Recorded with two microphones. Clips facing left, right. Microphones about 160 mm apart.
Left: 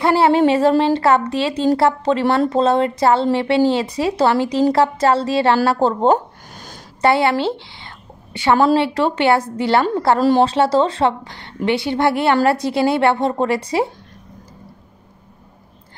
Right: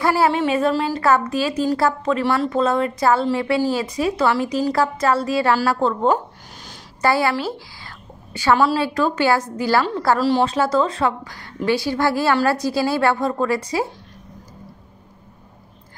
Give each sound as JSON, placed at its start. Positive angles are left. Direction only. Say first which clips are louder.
{"t": 0.0, "sound": "a woman's voice", "louder": "left 4 dB", "side_deg": 25}
{"t": 6.5, "sound": "a sound", "louder": "left 3 dB", "side_deg": 50}
{"t": 7.0, "sound": "a woman's voice", "louder": "left 3 dB", "side_deg": 25}